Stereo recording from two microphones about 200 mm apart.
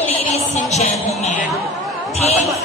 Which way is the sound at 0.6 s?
35° left (ahead or behind).